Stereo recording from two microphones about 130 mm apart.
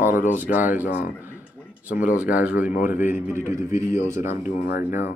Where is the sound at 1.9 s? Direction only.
90° left.